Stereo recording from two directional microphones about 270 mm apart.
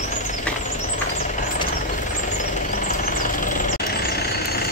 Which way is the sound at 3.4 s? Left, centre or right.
Left.